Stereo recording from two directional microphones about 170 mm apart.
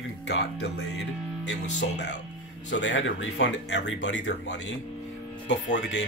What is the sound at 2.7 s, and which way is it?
Speech, 90° left.